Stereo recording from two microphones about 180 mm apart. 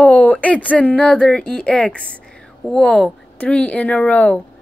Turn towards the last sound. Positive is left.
turn(degrees=5)  # may be behind; listen again after turning